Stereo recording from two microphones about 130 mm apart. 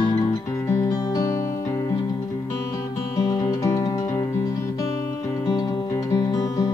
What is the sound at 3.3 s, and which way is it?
Music, 25° left (ahead or behind).